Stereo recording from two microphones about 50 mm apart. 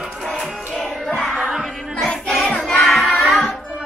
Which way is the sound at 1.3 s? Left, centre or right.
Centre.